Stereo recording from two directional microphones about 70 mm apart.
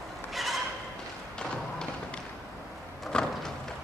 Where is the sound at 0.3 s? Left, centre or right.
Centre.